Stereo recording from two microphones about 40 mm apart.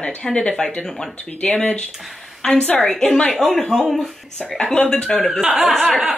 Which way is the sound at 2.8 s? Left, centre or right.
Centre.